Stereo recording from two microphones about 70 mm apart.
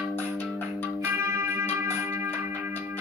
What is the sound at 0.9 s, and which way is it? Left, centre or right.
Music, right.